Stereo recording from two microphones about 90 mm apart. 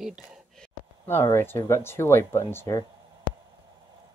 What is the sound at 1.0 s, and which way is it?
Speech, 25° left (ahead or behind).